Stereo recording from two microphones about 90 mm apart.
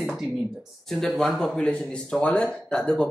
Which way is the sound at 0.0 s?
Centre (ahead or behind).